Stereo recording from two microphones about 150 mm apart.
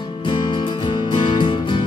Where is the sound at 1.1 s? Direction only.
35° left (ahead or behind).